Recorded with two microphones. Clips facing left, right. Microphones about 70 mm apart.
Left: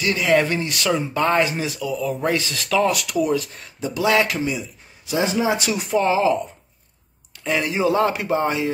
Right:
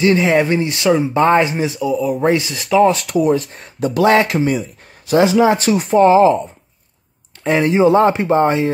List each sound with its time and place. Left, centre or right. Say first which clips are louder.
0.0 s speech: right 5 dB; right
2.5 s speech: right 8 dB; centre
2.9 s a man's voice: right 6 dB; right
5.2 s speech: right 9 dB; right
5.5 s speech: right 7 dB; right
7.4 s speech: right 8 dB; right